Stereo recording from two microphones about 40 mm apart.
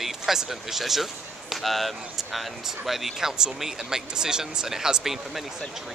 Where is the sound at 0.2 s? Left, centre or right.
Centre.